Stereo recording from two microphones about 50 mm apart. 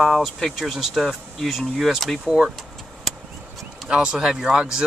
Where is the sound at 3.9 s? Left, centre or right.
Centre.